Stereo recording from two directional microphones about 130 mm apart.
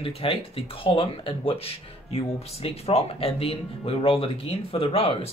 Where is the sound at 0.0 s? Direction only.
45° left (ahead or behind).